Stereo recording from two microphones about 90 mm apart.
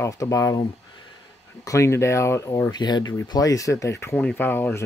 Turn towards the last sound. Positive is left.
turn(degrees=25)  # may be behind; listen again after turning